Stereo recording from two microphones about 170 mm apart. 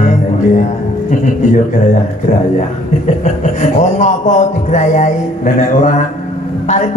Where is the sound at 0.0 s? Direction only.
45° left (ahead or behind).